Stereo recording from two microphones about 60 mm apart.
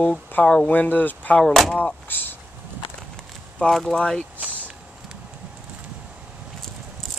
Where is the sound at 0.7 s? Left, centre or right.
Left.